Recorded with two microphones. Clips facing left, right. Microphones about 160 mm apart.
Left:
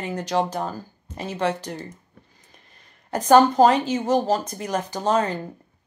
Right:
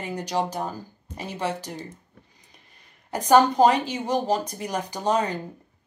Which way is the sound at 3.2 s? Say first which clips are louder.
Left 2 dB; 10° right (ahead or behind).